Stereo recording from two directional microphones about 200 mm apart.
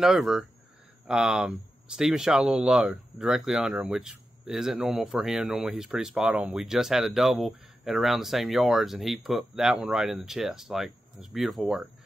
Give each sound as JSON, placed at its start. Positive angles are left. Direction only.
{"t": 0.0, "sound": "speech", "side_deg": 0}